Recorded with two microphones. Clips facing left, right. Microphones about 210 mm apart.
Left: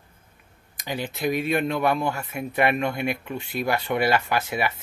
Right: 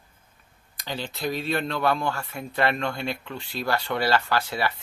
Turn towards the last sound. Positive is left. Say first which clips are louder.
# left 1 dB
turn(degrees=20)  # may be behind; listen again after turning